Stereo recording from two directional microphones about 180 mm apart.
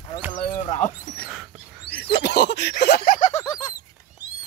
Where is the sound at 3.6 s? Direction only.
20° left (ahead or behind).